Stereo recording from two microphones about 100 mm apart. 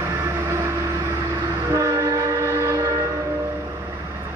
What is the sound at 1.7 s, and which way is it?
Train, 30° right (ahead or behind).